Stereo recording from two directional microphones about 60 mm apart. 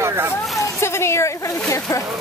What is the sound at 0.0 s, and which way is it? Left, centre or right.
Hubbub, right.